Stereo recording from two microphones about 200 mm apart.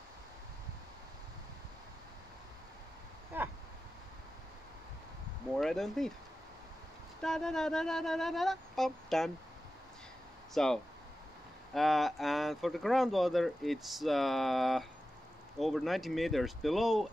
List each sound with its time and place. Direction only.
3.3 s a sound: 10° right (ahead or behind)
5.6 s speech: centre (ahead or behind)
7.2 s speech: 5° left (ahead or behind)
10.5 s speech: centre (ahead or behind)